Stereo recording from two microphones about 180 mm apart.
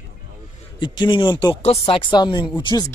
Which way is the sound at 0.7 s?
25° left (ahead or behind).